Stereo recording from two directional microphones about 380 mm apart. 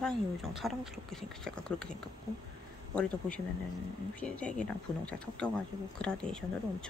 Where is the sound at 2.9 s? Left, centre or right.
Centre.